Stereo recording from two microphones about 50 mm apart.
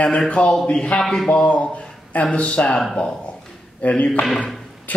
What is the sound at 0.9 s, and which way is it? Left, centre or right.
Speech, centre.